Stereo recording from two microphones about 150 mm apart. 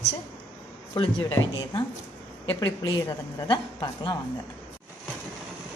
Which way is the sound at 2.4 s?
30° left (ahead or behind).